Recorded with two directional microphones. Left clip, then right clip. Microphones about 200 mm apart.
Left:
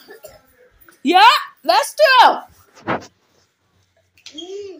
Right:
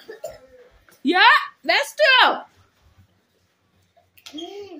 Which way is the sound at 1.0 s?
15° left (ahead or behind).